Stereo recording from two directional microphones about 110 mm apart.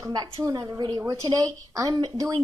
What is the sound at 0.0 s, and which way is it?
A woman's voice, 35° right (ahead or behind).